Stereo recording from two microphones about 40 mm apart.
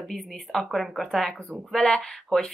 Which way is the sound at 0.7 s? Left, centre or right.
Centre.